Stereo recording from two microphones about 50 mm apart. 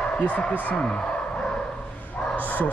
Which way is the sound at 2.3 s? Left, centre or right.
Left.